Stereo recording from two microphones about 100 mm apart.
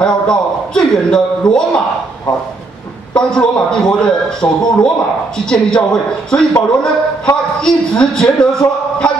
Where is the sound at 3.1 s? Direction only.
10° left (ahead or behind).